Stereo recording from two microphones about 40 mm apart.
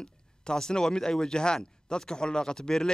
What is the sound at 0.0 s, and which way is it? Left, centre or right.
Speech, left.